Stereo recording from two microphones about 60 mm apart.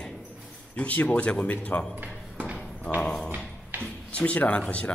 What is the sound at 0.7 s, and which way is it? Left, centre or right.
A man's voice, left.